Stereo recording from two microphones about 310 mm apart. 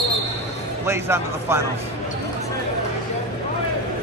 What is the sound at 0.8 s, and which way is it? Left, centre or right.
Speech, centre.